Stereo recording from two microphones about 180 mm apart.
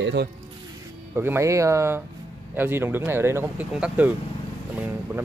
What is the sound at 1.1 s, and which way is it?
Speech, 15° right (ahead or behind).